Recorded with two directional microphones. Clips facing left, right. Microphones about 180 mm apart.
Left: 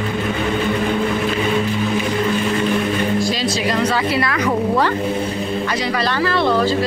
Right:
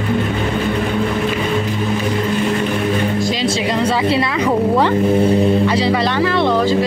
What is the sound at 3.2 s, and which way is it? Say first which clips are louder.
A woman's voice: right 2 dB; 25° right (ahead or behind).